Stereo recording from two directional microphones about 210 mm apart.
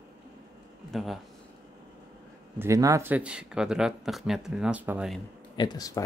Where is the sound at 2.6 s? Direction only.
15° right (ahead or behind).